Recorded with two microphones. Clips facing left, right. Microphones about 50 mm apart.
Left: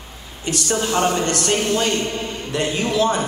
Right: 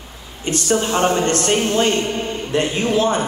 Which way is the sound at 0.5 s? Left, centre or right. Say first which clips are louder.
Right 2 dB; right.